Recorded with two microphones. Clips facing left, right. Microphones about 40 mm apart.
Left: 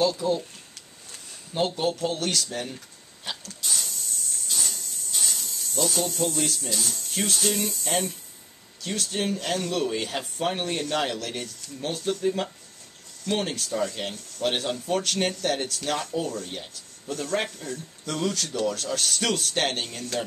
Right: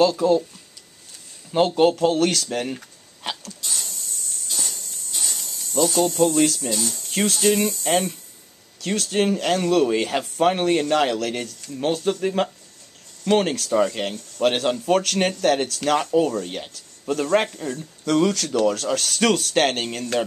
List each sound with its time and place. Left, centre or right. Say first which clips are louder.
0.2 s speech: right 7 dB; right
1.8 s speech: right 9 dB; right
3.3 s dog: right 5 dB; right
3.6 s a sound: even; centre
6.7 s speech: right 4 dB; centre
8.8 s speech: right 7 dB; right
13.3 s speech: right 8 dB; right
14.0 s speech: right 6 dB; right
14.4 s speech: right 6 dB; right
18.0 s speech: right 9 dB; right